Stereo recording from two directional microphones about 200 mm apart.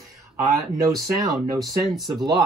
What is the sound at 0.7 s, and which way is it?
Speech, 15° right (ahead or behind).